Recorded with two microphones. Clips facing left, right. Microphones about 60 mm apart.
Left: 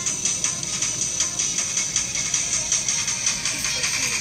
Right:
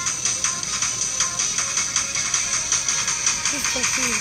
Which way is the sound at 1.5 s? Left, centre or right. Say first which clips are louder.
Right 4 dB; right.